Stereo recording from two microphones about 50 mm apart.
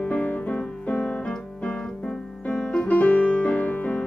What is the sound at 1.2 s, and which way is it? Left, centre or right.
Piano, centre.